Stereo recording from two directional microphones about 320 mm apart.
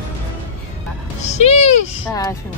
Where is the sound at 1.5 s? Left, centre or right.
Centre.